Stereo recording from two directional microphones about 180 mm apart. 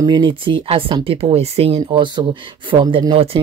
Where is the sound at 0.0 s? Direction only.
25° right (ahead or behind).